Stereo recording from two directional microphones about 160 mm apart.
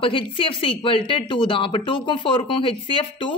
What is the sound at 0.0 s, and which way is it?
Speech, 35° left (ahead or behind).